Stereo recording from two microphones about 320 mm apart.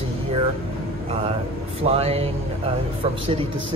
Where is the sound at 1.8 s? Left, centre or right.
Centre.